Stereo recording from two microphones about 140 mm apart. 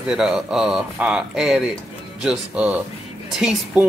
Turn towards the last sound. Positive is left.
turn(degrees=-5)  # may be behind; listen again after turning